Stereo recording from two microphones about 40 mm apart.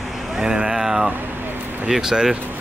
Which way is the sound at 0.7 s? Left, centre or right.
Centre.